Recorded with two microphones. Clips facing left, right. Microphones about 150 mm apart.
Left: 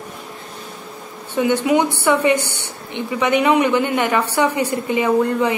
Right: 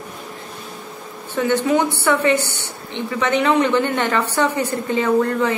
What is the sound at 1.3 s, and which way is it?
A woman's voice, 15° left (ahead or behind).